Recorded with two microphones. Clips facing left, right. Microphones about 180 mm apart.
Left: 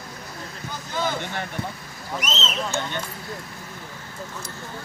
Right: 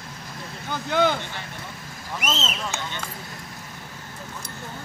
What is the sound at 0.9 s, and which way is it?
Speech, 70° right (ahead or behind).